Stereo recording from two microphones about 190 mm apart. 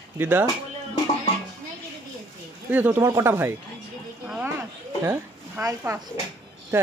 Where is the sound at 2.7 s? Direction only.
10° right (ahead or behind).